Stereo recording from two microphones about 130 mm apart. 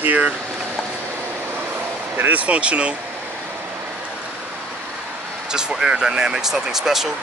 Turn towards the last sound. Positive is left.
turn(degrees=-5)  # may be behind; listen again after turning